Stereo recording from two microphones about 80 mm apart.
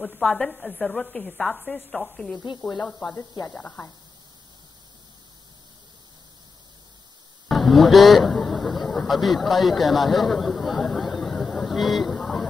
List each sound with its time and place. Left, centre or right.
0.0 s speech: centre
2.3 s speech: left
2.9 s speech: centre
7.4 s speech: centre